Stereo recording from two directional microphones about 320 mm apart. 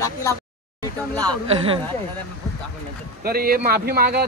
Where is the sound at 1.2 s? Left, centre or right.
Centre.